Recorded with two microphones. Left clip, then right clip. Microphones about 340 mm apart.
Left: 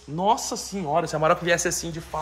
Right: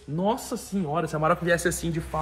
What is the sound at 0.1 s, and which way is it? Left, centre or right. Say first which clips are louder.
Speech: left 4 dB; left.